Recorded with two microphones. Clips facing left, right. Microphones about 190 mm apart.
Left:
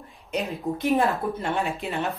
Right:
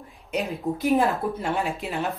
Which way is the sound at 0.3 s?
5° right (ahead or behind).